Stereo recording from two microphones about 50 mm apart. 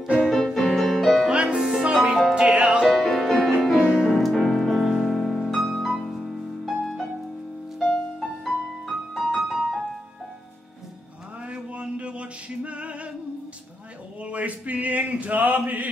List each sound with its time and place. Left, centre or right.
0.2 s music: centre
1.3 s music: centre
2.9 s music: centre
3.8 s music: centre
4.1 s music: centre
7.9 s music: centre
11.4 s music: right
14.2 s male singing: right